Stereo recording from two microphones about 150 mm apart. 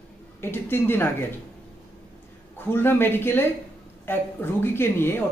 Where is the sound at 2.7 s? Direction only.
15° left (ahead or behind).